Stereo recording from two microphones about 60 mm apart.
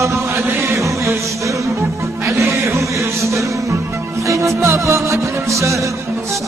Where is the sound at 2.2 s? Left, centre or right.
Right.